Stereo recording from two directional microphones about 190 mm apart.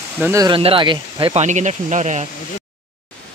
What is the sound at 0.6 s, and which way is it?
Speech, 30° right (ahead or behind).